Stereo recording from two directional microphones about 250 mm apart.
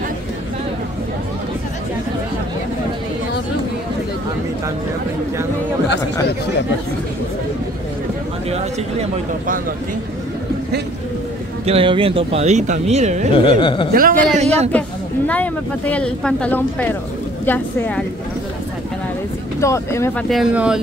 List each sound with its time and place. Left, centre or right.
11.6 s speech: right
13.3 s speech: centre
13.9 s speech: right
14.7 s speech: centre
19.6 s speech: centre
20.2 s speech: centre